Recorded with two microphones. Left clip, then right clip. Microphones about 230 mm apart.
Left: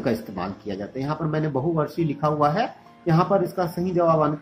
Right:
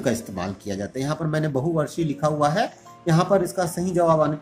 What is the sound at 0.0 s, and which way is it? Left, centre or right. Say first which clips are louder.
Speech: right 1 dB; centre.